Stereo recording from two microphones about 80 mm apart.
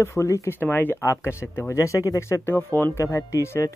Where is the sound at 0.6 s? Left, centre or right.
Left.